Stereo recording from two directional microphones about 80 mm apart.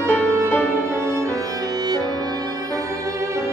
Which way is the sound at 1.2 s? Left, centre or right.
Right.